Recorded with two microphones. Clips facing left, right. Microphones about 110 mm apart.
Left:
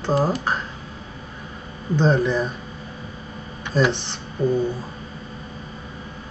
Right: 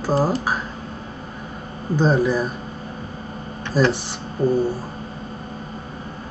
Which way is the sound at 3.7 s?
5° right (ahead or behind).